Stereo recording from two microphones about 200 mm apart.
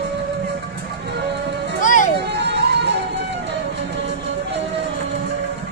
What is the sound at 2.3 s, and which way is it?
Music, 60° right (ahead or behind).